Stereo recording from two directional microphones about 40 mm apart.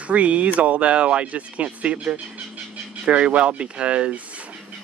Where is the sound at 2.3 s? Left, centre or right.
Right.